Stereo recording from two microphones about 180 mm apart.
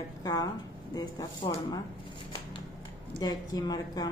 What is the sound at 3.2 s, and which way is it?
Speech, 20° left (ahead or behind).